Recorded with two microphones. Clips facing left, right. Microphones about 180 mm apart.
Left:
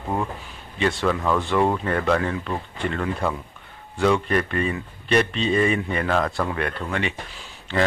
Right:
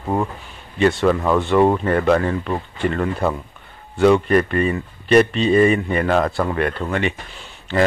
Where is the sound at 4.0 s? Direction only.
5° right (ahead or behind).